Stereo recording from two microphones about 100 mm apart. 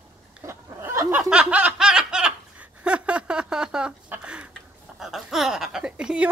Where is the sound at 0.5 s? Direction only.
25° right (ahead or behind).